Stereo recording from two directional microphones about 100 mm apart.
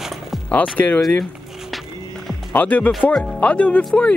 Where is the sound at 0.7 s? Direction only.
15° left (ahead or behind).